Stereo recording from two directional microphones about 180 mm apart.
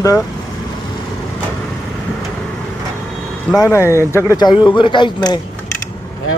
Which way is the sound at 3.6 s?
15° left (ahead or behind).